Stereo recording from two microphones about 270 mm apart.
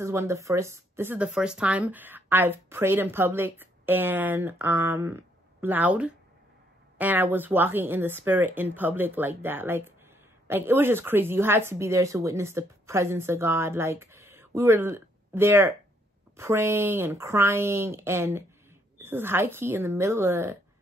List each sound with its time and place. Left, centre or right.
0.0 s speech: centre